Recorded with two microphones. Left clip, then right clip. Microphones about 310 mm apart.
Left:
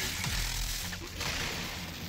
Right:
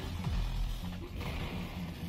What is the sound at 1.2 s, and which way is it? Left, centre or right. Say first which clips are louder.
Music: left 8 dB; left.